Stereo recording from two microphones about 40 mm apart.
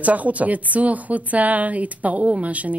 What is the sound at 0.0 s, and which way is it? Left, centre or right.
A woman's voice, right.